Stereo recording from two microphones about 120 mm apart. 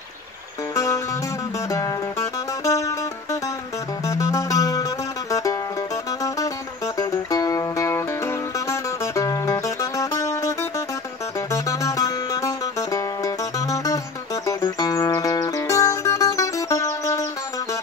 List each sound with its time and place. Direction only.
0.7 s music: 25° left (ahead or behind)